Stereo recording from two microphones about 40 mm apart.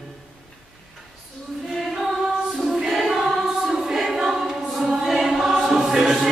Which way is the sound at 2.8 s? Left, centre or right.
Centre.